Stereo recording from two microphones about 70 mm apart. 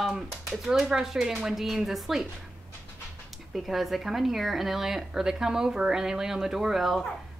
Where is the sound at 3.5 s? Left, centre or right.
Centre.